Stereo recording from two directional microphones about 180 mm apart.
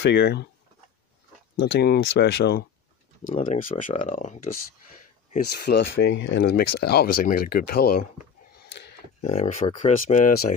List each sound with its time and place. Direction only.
0.0 s speech: 75° left (ahead or behind)
1.6 s speech: 65° left (ahead or behind)
3.3 s speech: 45° left (ahead or behind)
5.5 s speech: 65° left (ahead or behind)
9.2 s speech: 40° left (ahead or behind)